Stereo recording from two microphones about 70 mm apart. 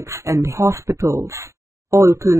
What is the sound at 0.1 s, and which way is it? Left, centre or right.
Speech, right.